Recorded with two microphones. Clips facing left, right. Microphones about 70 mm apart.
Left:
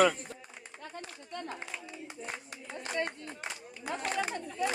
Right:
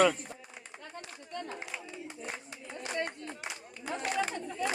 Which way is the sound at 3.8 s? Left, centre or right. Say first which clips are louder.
Right 1 dB; centre.